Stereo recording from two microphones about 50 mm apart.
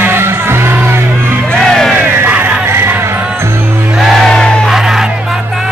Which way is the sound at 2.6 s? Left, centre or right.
Right.